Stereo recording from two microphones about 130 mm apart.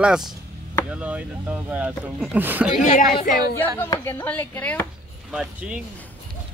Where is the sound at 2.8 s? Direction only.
75° left (ahead or behind).